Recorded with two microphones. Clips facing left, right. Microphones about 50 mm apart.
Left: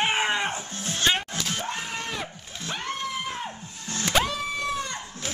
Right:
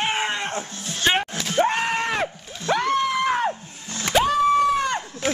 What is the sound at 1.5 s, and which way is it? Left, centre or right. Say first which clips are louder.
Screaming: right 11 dB; right.